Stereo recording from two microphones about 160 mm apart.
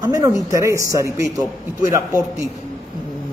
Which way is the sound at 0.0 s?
20° right (ahead or behind).